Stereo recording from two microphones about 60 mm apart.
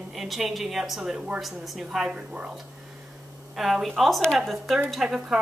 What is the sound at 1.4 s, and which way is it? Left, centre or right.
Speech, centre.